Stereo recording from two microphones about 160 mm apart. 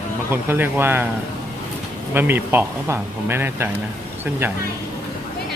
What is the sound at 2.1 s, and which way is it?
Speech, 15° right (ahead or behind).